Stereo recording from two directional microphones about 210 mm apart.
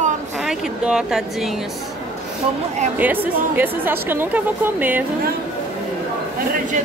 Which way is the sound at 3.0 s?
10° right (ahead or behind).